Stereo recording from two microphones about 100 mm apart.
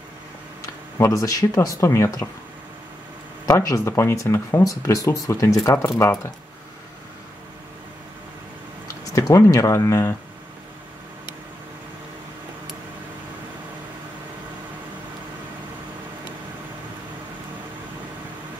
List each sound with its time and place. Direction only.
0.6 s speech: 30° left (ahead or behind)
3.4 s speech: 35° left (ahead or behind)
8.8 s speech: 35° left (ahead or behind)